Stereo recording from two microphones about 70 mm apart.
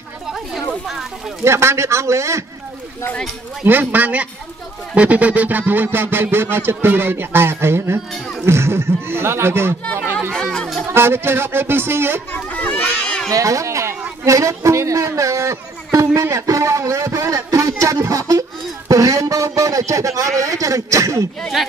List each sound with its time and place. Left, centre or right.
1.4 s speech: right
3.6 s speech: right
10.3 s chatter: centre
10.9 s speech: right
12.5 s children playing: left
13.3 s a man's voice: right
21.4 s speech: centre